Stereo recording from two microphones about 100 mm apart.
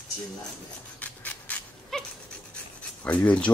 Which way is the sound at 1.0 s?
15° left (ahead or behind).